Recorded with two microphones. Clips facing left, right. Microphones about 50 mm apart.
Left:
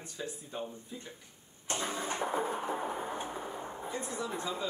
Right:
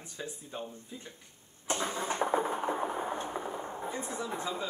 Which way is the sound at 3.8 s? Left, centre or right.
Centre.